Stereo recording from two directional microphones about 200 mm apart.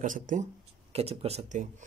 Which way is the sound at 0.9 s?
30° right (ahead or behind).